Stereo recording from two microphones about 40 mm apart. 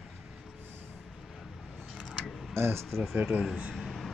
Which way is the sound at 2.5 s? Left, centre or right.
Right.